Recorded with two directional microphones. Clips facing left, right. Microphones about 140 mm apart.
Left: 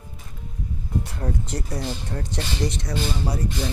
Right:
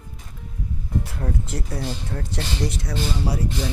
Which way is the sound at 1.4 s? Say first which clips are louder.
Even; 5° right (ahead or behind).